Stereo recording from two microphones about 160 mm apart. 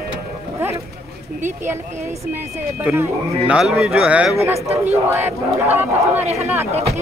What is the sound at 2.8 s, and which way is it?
Speech, 10° right (ahead or behind).